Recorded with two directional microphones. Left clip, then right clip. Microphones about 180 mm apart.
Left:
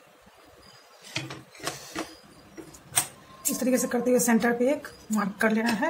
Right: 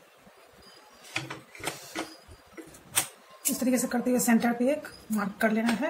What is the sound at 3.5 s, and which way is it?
Speech, 45° left (ahead or behind).